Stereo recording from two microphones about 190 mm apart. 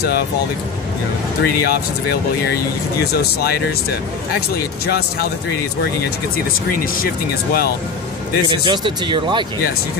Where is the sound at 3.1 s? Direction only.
55° left (ahead or behind).